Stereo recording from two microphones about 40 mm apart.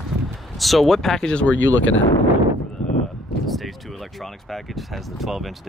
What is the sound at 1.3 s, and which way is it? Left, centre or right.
Speech, left.